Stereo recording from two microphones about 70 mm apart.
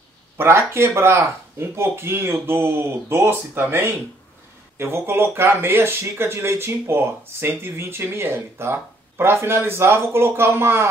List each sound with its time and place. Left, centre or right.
0.4 s speech: right